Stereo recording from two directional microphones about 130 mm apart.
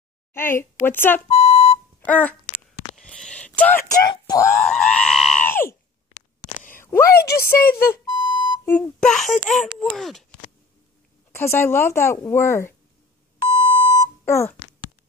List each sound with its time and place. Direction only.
0.3 s a woman's voice: 20° left (ahead or behind)
1.3 s alarm clock: 50° left (ahead or behind)
2.0 s speech: 10° left (ahead or behind)
3.0 s a sound: 5° left (ahead or behind)
3.9 s speech: 30° left (ahead or behind)
4.4 s screaming: 10° left (ahead or behind)
5.4 s screaming: 15° left (ahead or behind)
6.8 s speech: 20° left (ahead or behind)
8.1 s alarm clock: 35° left (ahead or behind)
8.6 s screaming: 10° left (ahead or behind)
9.8 s speech: centre (ahead or behind)
11.3 s speech: 20° left (ahead or behind)
13.5 s beep: 50° left (ahead or behind)
13.9 s alarm clock: 20° left (ahead or behind)